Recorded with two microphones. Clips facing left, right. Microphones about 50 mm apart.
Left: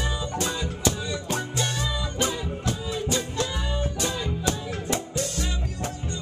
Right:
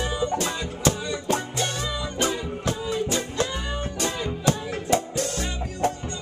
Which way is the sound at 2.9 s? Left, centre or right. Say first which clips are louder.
Right 1 dB; right.